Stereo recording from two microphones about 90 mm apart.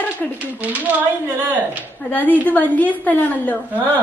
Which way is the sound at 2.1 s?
15° left (ahead or behind).